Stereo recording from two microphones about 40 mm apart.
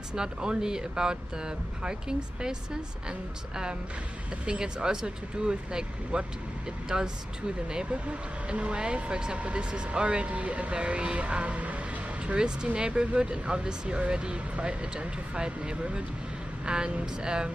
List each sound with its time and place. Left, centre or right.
0.1 s speech: centre